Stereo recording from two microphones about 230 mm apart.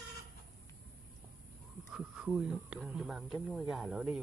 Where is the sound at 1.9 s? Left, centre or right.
Centre.